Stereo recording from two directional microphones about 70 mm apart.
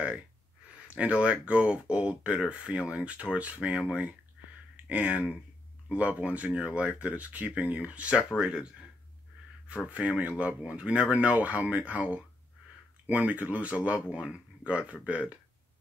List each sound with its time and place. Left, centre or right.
0.8 s speech: centre
9.8 s speech: centre